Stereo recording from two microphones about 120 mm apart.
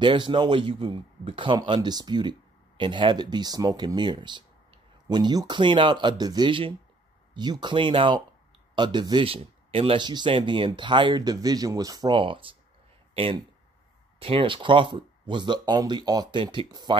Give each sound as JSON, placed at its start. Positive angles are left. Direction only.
{"t": 0.0, "sound": "speech", "side_deg": -40}
{"t": 12.2, "sound": "speech", "side_deg": -45}